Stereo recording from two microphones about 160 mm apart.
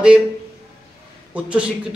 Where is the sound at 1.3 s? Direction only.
5° right (ahead or behind).